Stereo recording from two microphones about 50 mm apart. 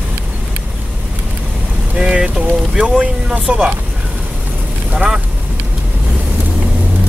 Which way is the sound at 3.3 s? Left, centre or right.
Centre.